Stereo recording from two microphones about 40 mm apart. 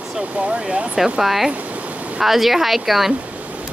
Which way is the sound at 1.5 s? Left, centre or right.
Right.